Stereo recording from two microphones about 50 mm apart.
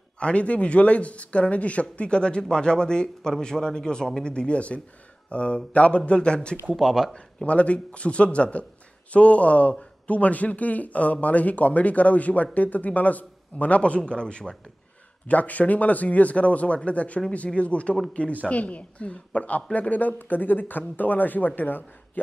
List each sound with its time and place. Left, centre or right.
0.2 s speech: left
6.7 s speech: centre
7.2 s speech: left
15.2 s a woman's voice: left